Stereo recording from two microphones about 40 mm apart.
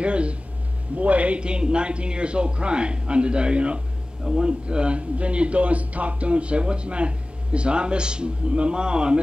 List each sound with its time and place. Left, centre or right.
0.0 s a man's voice: right